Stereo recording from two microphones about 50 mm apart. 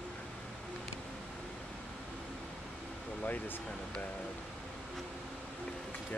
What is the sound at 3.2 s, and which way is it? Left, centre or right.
Speech, left.